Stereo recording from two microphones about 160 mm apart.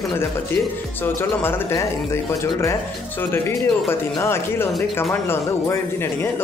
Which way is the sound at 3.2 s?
15° left (ahead or behind).